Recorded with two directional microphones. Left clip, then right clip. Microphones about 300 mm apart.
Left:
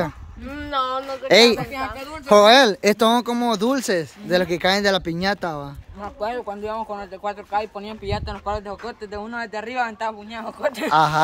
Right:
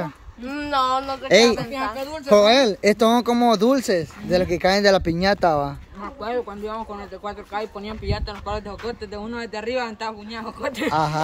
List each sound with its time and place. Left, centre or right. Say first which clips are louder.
0.5 s speech: right 3 dB; right
1.3 s speech: left 2 dB; centre
6.2 s speech: even; left; by 11.2 s centre